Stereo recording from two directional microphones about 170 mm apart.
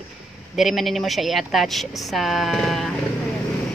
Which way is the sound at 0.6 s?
Centre (ahead or behind).